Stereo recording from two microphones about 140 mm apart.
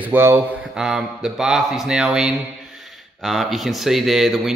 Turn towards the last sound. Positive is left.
turn(degrees=0)  # may be behind; listen again after turning